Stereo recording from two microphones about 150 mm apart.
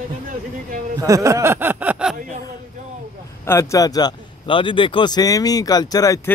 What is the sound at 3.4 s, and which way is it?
A man's voice, 20° left (ahead or behind).